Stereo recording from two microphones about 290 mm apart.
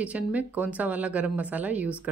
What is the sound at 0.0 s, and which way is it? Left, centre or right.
A woman's voice, centre.